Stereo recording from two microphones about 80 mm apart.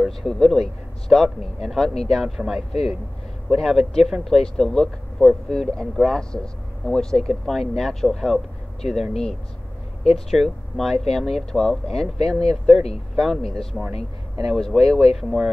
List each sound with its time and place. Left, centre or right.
0.0 s speech: centre